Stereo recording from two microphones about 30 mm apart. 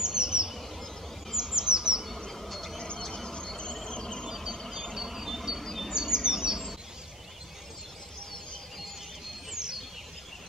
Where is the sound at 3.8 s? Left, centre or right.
Left.